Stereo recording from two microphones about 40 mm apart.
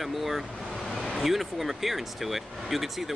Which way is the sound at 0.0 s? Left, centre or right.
Centre.